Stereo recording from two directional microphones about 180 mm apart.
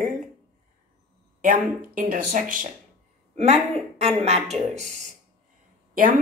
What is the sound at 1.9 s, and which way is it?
Speech, 50° right (ahead or behind).